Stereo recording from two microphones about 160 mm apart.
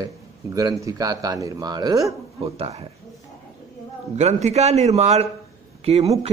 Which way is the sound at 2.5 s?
40° right (ahead or behind).